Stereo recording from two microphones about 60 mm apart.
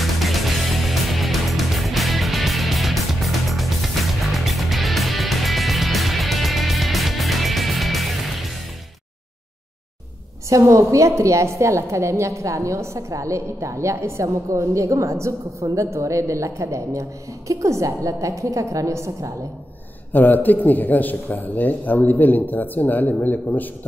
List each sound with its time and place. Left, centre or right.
0.0 s music: centre
10.6 s a woman's voice: right
20.1 s a man's voice: left